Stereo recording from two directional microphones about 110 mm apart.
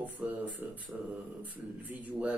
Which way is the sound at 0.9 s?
5° right (ahead or behind).